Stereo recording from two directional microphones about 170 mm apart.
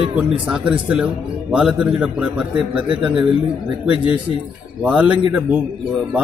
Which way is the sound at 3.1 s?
30° right (ahead or behind).